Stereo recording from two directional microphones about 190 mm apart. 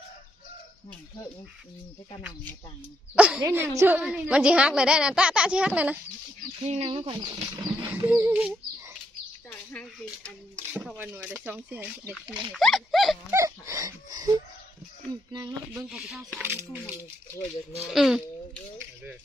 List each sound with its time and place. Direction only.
3.2 s speech: 5° right (ahead or behind)
6.6 s speech: 35° right (ahead or behind)
7.9 s speech: 10° right (ahead or behind)
9.5 s speech: 5° left (ahead or behind)
11.0 s speech: 10° right (ahead or behind)
13.3 s speech: 15° right (ahead or behind)
15.7 s speech: centre (ahead or behind)
17.8 s speech: centre (ahead or behind)